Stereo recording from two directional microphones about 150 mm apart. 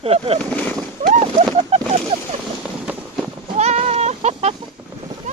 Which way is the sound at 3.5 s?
50° right (ahead or behind).